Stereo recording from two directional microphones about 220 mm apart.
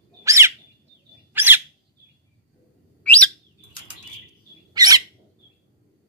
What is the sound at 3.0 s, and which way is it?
Bird, 5° left (ahead or behind).